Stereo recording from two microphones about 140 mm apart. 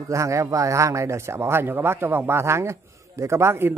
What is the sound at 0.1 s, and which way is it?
Speech, 20° right (ahead or behind).